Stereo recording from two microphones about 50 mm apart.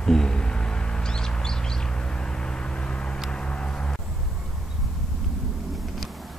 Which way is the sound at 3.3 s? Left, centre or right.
Centre.